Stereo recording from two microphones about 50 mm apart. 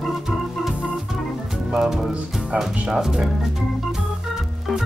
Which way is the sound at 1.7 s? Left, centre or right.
Centre.